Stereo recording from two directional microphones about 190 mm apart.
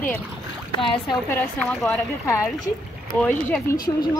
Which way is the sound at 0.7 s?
25° left (ahead or behind).